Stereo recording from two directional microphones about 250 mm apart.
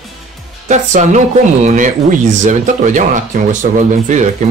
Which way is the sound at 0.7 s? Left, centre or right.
Right.